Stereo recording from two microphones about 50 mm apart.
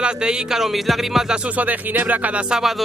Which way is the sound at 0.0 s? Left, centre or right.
Centre.